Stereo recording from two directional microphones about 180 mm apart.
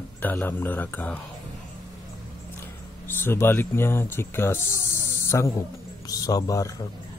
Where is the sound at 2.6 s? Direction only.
10° left (ahead or behind).